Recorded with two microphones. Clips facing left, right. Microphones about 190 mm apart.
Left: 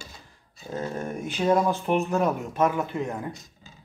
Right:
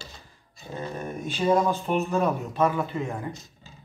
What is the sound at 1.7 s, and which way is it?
Speech, 15° left (ahead or behind).